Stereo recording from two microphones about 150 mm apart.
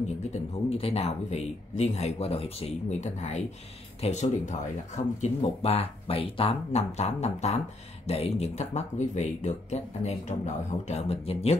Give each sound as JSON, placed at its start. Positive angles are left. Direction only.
{"t": 0.3, "sound": "speech", "side_deg": 40}